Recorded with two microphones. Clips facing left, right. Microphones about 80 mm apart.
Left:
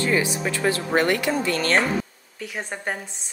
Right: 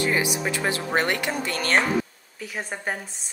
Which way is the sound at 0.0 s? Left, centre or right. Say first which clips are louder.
Left 1 dB; centre.